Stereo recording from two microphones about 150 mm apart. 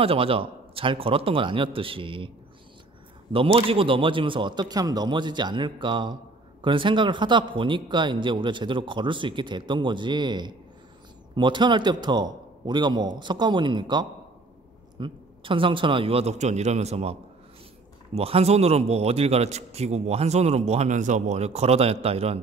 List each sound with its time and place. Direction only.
0.0 s a man's voice: 40° right (ahead or behind)
3.3 s a man's voice: 40° right (ahead or behind)